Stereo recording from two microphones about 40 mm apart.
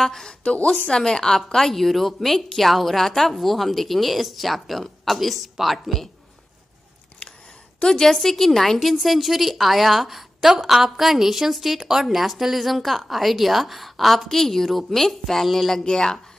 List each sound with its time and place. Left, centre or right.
0.0 s a woman's voice: centre
0.3 s a woman's voice: left; by 6.0 s centre
7.2 s a sound: left
7.8 s a woman's voice: centre
15.8 s a woman's voice: centre